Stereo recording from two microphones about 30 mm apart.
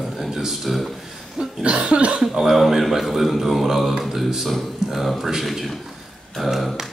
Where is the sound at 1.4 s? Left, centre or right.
Right.